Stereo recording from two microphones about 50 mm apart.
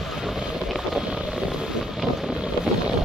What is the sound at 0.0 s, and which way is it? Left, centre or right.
Boat, centre.